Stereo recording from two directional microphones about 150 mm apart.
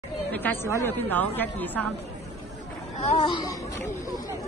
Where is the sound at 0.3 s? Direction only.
10° left (ahead or behind).